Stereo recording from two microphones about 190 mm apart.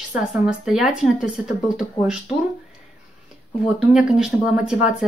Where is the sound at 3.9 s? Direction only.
5° right (ahead or behind).